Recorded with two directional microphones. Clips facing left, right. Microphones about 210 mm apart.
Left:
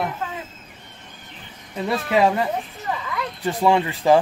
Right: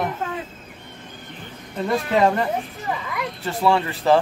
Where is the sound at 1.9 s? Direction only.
5° left (ahead or behind).